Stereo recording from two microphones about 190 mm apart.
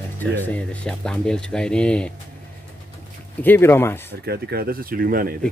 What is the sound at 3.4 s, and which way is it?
Speech, 10° left (ahead or behind).